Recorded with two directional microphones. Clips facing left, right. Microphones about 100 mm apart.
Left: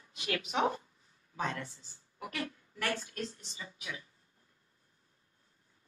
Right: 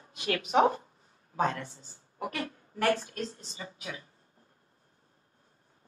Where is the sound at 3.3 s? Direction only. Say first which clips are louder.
Right 5 dB; 35° right (ahead or behind).